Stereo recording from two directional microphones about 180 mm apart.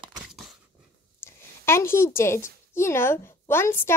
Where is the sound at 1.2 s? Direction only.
15° left (ahead or behind).